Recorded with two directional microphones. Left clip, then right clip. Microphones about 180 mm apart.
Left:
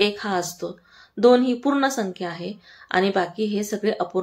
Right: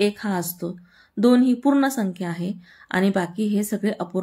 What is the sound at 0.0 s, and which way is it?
Speech, 35° right (ahead or behind).